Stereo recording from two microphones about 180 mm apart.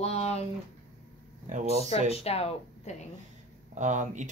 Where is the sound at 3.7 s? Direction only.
45° right (ahead or behind).